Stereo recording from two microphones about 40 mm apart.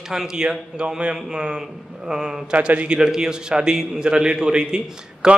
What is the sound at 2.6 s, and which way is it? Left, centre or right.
Speech, right.